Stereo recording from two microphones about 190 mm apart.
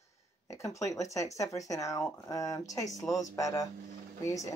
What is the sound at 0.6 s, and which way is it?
A woman's voice, 15° left (ahead or behind).